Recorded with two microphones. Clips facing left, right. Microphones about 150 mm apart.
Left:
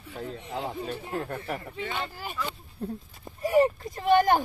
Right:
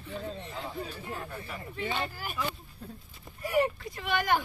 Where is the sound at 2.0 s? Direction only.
25° left (ahead or behind).